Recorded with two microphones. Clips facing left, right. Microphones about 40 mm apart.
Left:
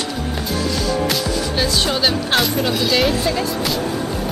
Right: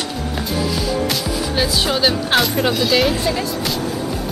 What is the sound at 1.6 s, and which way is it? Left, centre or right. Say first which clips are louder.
Speech: right 2 dB; centre.